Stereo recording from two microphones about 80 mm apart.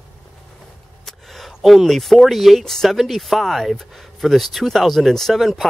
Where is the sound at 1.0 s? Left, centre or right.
Centre.